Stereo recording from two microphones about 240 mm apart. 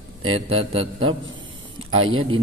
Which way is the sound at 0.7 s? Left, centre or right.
Right.